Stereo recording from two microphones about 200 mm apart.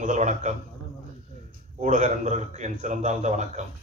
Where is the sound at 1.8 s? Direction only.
35° right (ahead or behind).